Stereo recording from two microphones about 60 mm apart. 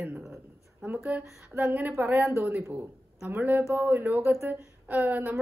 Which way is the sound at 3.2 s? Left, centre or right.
Right.